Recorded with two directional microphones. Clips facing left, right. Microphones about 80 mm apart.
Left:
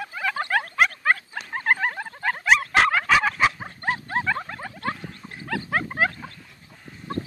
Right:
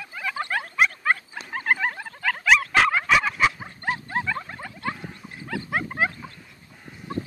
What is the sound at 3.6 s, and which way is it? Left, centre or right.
Dog, left.